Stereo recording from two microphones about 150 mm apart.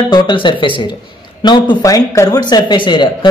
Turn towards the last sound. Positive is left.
turn(degrees=35)  # may be behind; listen again after turning